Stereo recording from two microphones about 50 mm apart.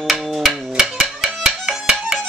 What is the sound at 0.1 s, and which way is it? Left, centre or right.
Music, centre.